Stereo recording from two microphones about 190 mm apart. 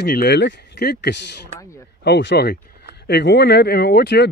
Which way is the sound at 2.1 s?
65° left (ahead or behind).